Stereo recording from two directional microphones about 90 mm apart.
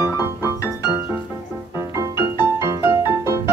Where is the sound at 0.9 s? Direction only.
25° right (ahead or behind).